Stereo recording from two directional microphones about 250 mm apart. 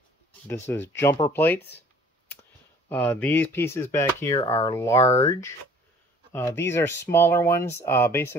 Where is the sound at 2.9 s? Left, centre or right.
Centre.